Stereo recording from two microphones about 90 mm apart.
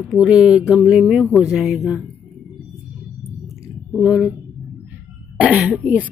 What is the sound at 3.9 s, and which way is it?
Speech, 10° right (ahead or behind).